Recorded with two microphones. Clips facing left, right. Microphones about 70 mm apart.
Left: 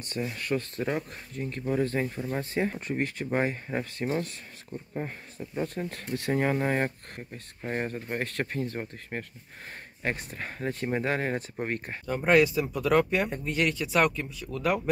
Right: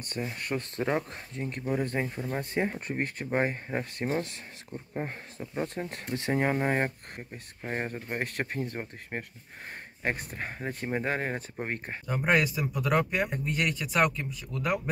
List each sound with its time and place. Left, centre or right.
0.2 s speech: centre
0.5 s speech: right
1.6 s speech: centre
10.3 s speech: centre